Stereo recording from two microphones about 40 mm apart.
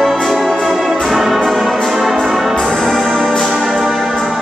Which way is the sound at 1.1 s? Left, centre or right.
Centre.